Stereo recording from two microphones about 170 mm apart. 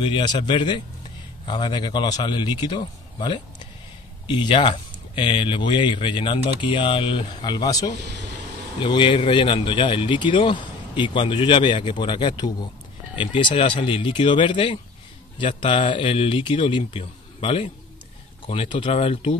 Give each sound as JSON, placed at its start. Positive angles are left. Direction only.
{"t": 0.0, "sound": "speech", "side_deg": 25}